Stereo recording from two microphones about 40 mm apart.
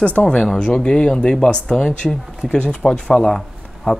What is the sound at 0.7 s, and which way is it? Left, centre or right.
Speech, left.